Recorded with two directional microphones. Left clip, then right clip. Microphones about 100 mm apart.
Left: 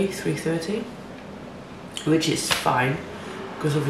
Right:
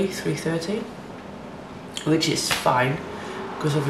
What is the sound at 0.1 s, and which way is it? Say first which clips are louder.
Speech: even; 15° right (ahead or behind).